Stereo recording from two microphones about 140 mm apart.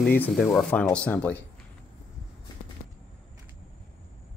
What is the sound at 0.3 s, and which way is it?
Speech, 5° left (ahead or behind).